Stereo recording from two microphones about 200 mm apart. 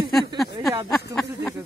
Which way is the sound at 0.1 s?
Centre (ahead or behind).